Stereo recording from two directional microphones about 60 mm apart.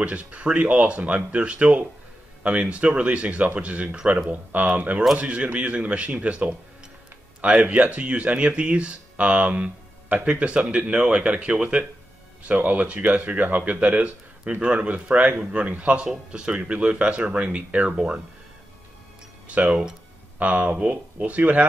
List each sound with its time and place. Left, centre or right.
0.0 s speech: right
19.4 s speech: right